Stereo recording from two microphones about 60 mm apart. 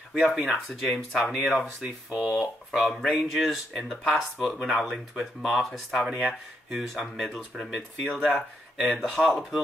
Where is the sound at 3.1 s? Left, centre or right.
Centre.